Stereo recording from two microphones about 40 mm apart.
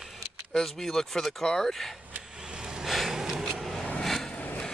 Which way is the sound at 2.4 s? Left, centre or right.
Centre.